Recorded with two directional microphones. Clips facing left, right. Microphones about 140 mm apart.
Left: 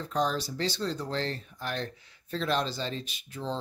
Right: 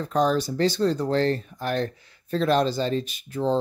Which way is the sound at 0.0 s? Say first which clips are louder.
Right 7 dB; 50° right (ahead or behind).